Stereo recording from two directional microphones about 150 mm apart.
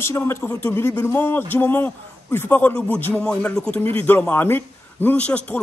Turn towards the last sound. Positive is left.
turn(degrees=10)  # may be behind; listen again after turning